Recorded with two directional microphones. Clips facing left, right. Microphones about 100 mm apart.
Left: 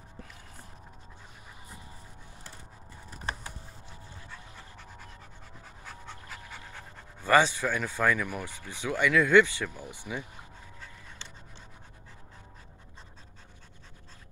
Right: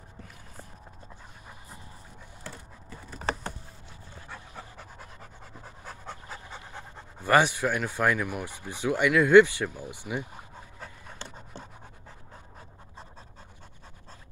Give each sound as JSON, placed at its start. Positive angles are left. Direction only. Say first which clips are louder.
{"t": 2.9, "sound": "computer keyboard", "louder": "right 5 dB", "side_deg": -90}
{"t": 5.9, "sound": "pant", "louder": "right 3 dB", "side_deg": -35}
{"t": 7.2, "sound": "speech", "louder": "right 1 dB", "side_deg": -15}
{"t": 10.8, "sound": "pant", "louder": "right 6 dB", "side_deg": -45}